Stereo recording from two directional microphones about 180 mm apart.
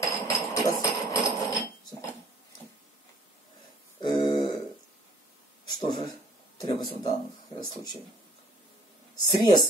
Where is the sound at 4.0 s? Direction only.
20° left (ahead or behind).